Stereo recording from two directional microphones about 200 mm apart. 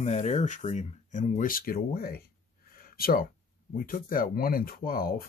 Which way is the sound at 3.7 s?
45° left (ahead or behind).